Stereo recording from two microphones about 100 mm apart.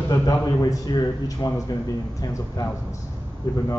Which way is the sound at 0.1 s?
40° left (ahead or behind).